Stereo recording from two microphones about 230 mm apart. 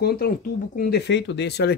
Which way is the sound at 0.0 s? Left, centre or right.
Left.